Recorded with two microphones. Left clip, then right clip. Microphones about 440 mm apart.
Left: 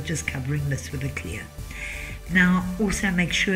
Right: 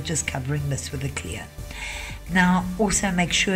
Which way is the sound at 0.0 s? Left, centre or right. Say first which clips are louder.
Right 2 dB; centre.